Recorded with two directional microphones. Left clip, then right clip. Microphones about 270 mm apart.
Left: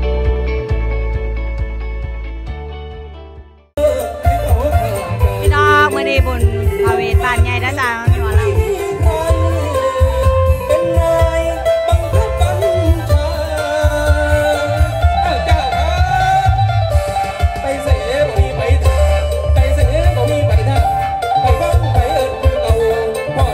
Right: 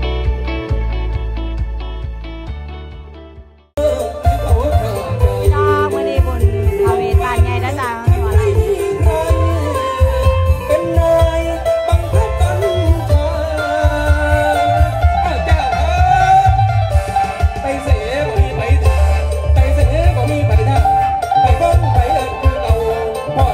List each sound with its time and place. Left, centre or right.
5.5 s music: centre
8.7 s music: left